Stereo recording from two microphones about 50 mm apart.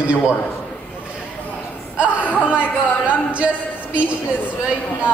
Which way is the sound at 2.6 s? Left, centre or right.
Right.